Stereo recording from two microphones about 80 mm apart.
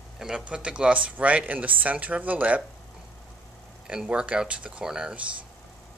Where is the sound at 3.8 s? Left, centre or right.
Centre.